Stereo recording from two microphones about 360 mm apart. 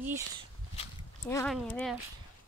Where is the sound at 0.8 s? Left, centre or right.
Centre.